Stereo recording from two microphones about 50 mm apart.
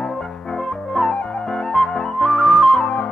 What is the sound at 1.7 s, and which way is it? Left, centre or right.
Flute, centre.